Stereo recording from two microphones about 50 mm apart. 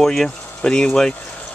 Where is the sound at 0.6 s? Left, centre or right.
Centre.